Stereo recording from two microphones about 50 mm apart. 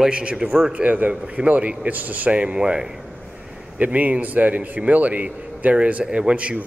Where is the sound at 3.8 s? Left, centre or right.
Right.